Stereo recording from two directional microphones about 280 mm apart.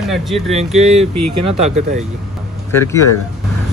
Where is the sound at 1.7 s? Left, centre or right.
Right.